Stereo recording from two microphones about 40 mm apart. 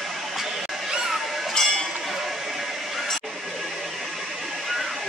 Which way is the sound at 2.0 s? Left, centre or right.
Centre.